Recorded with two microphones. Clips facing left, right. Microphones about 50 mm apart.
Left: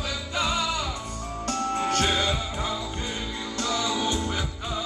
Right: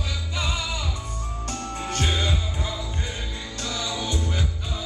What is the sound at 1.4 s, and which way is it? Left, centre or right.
Music, left.